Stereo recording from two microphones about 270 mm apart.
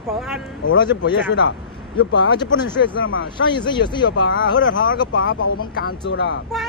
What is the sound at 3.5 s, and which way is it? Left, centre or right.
Speech, centre.